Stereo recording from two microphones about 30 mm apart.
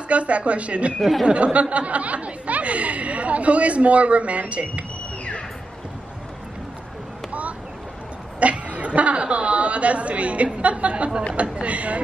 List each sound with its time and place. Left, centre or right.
0.1 s speech: right
8.4 s a woman's voice: right